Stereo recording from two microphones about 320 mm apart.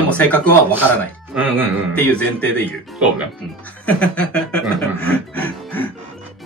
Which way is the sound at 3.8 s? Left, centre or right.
Centre.